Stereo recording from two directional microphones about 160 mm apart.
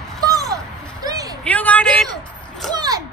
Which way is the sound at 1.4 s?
10° left (ahead or behind).